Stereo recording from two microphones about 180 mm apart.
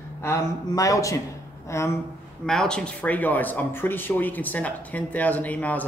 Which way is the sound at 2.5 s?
5° left (ahead or behind).